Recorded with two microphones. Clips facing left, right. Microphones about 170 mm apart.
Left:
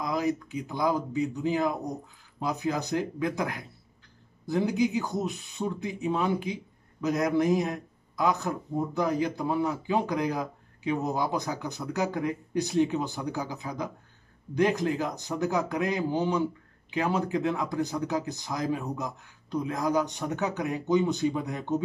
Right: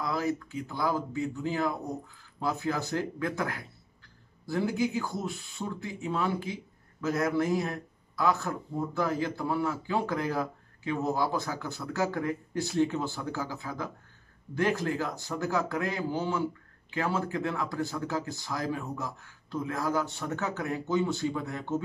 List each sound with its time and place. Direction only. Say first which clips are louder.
0.0 s a man's voice: left 2 dB; 15° left (ahead or behind)